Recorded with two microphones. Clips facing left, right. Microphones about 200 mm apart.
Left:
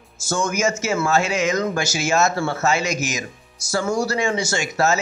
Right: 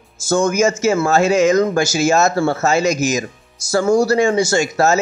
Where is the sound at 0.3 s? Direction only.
35° right (ahead or behind).